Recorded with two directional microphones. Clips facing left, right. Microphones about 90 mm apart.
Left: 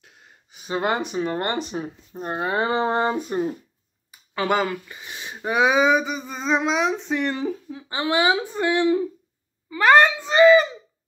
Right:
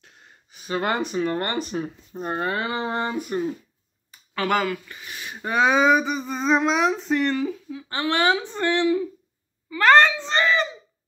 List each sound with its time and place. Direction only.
0.0 s speech: 15° left (ahead or behind)
2.1 s speech: 5° left (ahead or behind)
2.5 s speech: 30° left (ahead or behind)
4.4 s speech: 20° left (ahead or behind); by 7.3 s centre (ahead or behind)
7.3 s speech: 30° left (ahead or behind)
7.9 s speech: 15° left (ahead or behind)